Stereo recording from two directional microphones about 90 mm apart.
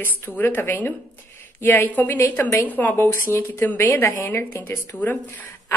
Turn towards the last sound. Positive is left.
turn(degrees=20)  # may be behind; listen again after turning